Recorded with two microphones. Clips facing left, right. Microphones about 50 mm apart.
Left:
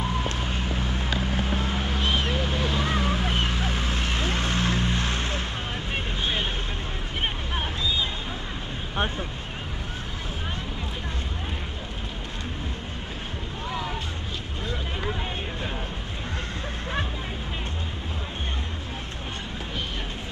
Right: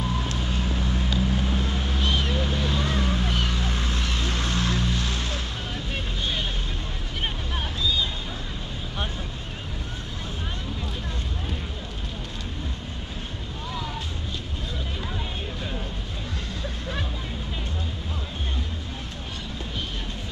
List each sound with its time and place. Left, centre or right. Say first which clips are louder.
0.2 s vehicle: even; left
7.5 s boat: right 2 dB; left